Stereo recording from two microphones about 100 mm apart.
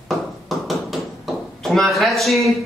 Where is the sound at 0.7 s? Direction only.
Centre (ahead or behind).